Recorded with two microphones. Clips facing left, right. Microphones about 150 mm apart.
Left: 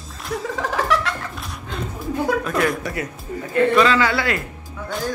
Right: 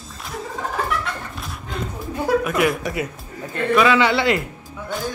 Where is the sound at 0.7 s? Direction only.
90° left.